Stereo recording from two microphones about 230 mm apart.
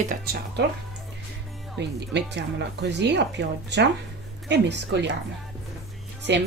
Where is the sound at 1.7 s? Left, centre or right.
Right.